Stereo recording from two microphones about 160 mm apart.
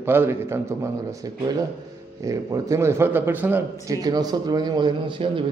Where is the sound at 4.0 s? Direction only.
25° right (ahead or behind).